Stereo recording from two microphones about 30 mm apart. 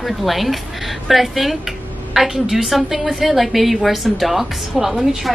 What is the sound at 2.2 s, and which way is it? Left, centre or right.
Speech, right.